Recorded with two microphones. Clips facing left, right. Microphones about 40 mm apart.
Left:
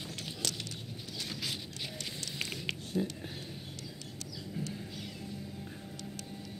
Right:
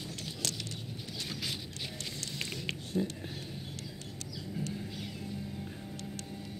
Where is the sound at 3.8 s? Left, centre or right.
Right.